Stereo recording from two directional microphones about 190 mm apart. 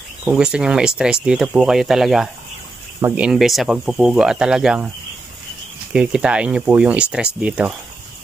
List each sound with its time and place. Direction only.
0.2 s speech: 5° right (ahead or behind)
5.9 s speech: 5° right (ahead or behind)